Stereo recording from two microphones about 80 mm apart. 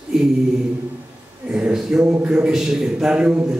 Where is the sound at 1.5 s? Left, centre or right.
Centre.